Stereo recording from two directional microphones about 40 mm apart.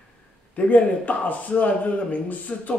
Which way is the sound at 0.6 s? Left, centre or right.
Left.